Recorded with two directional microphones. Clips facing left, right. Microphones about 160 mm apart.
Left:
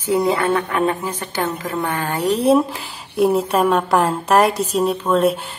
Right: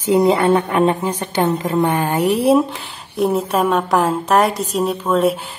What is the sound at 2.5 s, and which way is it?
Speech, centre (ahead or behind).